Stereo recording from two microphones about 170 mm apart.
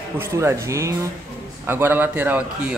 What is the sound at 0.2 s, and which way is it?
A man's voice, 15° right (ahead or behind).